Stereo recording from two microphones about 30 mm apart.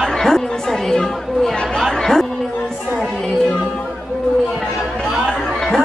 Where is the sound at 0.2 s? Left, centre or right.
Centre.